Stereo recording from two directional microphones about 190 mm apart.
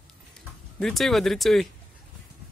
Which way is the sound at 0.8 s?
Centre (ahead or behind).